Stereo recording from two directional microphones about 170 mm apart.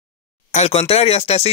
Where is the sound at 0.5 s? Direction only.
40° left (ahead or behind).